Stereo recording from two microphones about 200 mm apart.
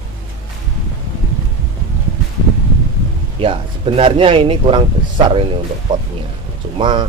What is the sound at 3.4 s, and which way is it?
Speech, 30° right (ahead or behind).